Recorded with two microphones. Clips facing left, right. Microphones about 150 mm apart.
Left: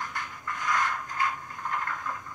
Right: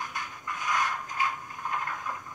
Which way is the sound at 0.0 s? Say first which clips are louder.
Left 1 dB; 15° right (ahead or behind).